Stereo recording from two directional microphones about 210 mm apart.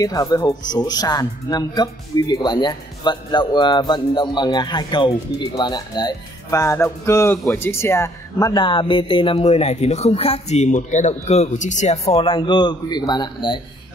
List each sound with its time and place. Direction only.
0.0 s speech: 20° left (ahead or behind)